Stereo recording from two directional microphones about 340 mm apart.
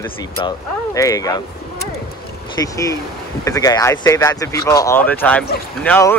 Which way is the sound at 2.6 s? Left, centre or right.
Centre.